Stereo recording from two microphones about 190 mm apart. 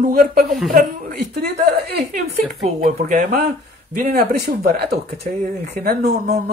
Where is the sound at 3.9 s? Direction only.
50° right (ahead or behind).